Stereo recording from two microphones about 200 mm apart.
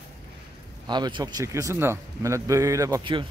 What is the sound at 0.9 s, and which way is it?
A man's voice, 20° right (ahead or behind).